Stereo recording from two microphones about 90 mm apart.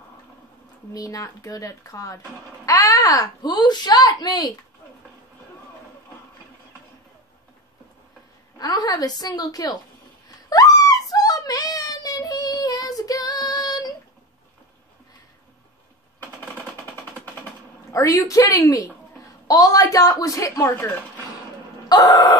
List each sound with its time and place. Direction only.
0.9 s a woman's voice: 40° left (ahead or behind)
8.5 s a child's voice: 45° left (ahead or behind)
10.5 s a sound: 40° left (ahead or behind)
16.3 s machine gun: 20° left (ahead or behind)
17.9 s a woman's voice: 40° left (ahead or behind)
21.8 s a child's voice: 45° left (ahead or behind)